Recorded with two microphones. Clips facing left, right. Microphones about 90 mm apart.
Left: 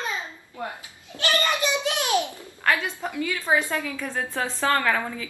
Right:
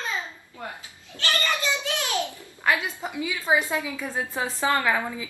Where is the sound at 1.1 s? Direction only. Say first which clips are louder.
Left 3 dB; 20° left (ahead or behind).